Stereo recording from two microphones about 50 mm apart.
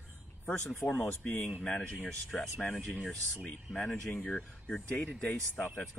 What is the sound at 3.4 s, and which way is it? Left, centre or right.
Speech, left.